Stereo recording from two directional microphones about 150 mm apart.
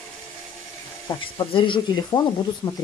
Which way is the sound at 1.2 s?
35° left (ahead or behind).